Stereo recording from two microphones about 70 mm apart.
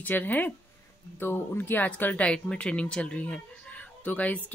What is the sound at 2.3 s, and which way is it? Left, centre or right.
Speech, centre.